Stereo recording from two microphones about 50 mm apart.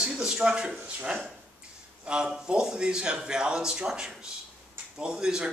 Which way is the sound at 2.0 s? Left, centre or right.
Centre.